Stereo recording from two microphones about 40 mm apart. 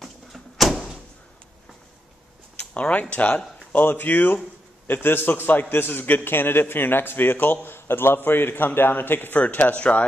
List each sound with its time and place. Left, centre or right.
0.0 s door: centre
2.7 s speech: left
3.7 s speech: left
4.8 s a man's voice: left
7.6 s a man's voice: left
9.4 s speech: left